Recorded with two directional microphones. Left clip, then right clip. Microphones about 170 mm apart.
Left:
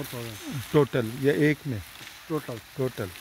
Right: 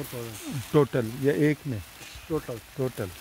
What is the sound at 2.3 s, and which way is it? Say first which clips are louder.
Speech: right 1 dB; 65° left (ahead or behind).